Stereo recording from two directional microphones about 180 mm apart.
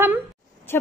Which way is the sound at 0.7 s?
15° left (ahead or behind).